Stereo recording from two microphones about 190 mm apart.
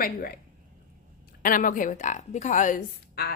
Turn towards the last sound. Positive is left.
turn(degrees=50)  # may be behind; listen again after turning